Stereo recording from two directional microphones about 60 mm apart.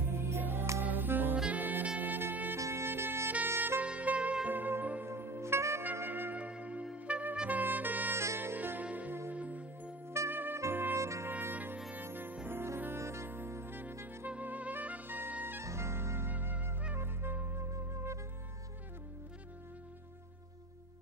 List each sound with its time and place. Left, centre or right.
0.1 s music: right
1.3 s saxophone: right
2.0 s music: right
3.8 s music: right
5.0 s music: right
6.0 s music: right
6.3 s music: right
10.3 s music: right
11.0 s trumpet: right
11.2 s music: right
15.6 s music: right
17.6 s music: right